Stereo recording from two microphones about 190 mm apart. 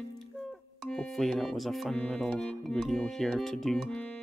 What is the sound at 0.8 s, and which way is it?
Speech, 5° left (ahead or behind).